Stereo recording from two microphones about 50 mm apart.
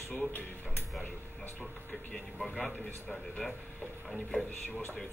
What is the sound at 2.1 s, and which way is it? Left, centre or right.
A man's voice, centre.